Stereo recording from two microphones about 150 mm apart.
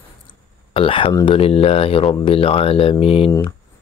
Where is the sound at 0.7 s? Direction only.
35° left (ahead or behind).